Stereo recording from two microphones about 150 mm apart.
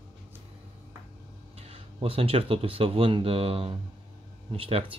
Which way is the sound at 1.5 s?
40° right (ahead or behind).